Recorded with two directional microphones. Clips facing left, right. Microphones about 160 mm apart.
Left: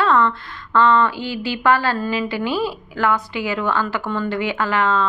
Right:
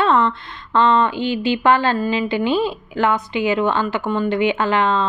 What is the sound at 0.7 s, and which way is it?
Speech, 20° right (ahead or behind).